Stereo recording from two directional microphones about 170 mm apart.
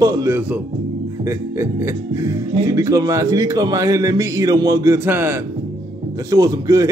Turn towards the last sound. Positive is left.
turn(degrees=-20)  # may be behind; listen again after turning